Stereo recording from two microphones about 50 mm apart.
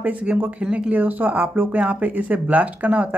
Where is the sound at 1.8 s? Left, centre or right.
Right.